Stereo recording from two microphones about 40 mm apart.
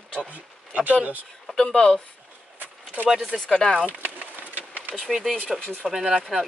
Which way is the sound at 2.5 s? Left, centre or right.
Right.